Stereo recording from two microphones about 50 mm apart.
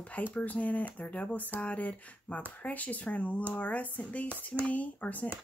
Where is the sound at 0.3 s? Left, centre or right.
Left.